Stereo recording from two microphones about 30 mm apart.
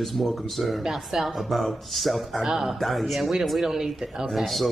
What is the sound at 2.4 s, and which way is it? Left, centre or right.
Speech, centre.